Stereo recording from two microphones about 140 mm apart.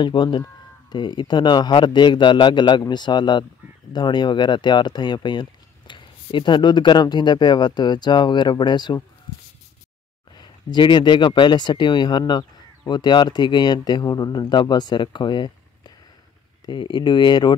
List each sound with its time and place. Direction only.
0.0 s speech: 35° left (ahead or behind)
10.3 s speech: 30° left (ahead or behind)